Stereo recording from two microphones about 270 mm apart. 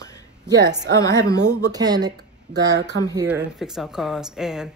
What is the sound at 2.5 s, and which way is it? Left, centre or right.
Speech, right.